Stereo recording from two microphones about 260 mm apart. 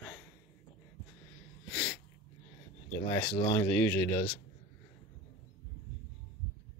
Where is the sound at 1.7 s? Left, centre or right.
Centre.